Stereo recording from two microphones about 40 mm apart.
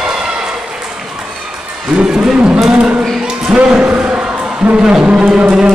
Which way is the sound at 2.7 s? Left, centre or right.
Right.